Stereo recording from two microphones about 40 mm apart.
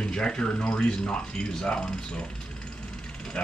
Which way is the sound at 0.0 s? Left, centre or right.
Left.